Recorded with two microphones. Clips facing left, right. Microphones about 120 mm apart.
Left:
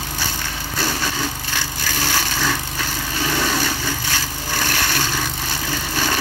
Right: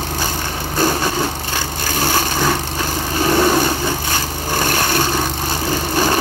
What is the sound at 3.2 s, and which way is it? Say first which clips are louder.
Vehicle: right 8 dB; 40° right (ahead or behind).